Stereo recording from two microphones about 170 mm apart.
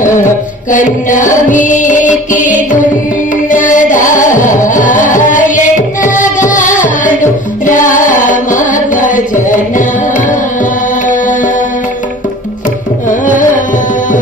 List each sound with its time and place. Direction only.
0.0 s music: 50° left (ahead or behind)
13.1 s carnatic music: 50° left (ahead or behind)